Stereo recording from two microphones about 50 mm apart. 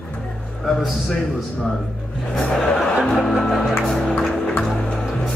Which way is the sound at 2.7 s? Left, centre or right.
Centre.